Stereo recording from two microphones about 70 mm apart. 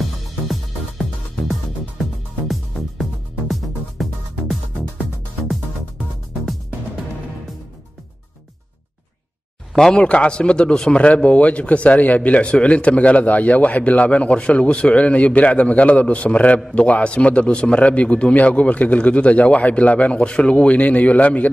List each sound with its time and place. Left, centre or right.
0.0 s music: centre
2.4 s music: centre
9.8 s a man's voice: centre